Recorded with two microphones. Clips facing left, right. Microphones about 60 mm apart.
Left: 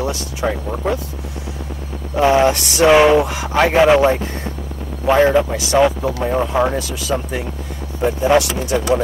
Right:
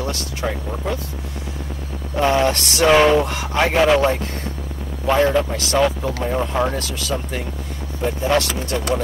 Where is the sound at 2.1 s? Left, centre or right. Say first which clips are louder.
Left 4 dB; centre.